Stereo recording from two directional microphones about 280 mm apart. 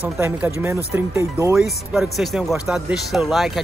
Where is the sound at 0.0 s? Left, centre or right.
Centre.